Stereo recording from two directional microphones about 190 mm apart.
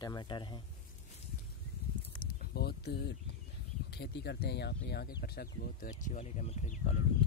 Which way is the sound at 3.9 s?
60° left (ahead or behind).